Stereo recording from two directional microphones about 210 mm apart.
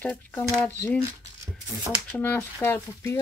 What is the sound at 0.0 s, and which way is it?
Speech, 10° left (ahead or behind).